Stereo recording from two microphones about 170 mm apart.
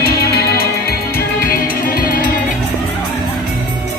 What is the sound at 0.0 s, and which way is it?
Music, 65° left (ahead or behind).